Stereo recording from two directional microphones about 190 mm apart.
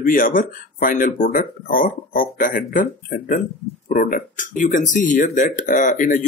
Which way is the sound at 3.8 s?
45° left (ahead or behind).